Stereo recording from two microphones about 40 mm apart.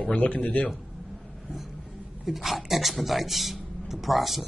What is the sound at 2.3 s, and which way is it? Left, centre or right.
Speech, centre.